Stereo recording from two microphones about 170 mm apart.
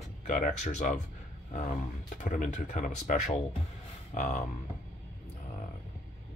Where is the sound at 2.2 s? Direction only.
50° left (ahead or behind).